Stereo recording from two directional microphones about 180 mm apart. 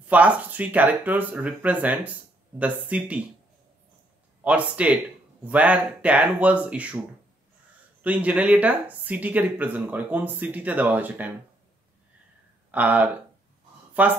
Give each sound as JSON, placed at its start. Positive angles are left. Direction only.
{"t": 0.1, "sound": "speech", "side_deg": -10}
{"t": 4.4, "sound": "speech", "side_deg": -10}
{"t": 8.0, "sound": "speech", "side_deg": -10}
{"t": 12.7, "sound": "speech", "side_deg": -10}